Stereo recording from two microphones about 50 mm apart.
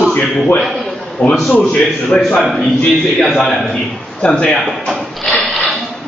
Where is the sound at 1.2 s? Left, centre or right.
Centre.